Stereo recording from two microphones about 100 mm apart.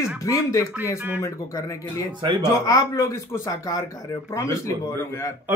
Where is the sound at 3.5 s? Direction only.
40° left (ahead or behind).